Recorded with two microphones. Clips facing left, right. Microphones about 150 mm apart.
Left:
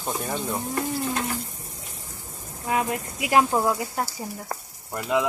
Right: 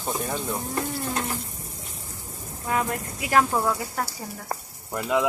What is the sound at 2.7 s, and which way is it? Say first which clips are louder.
Speech: left 1 dB; 15° left (ahead or behind).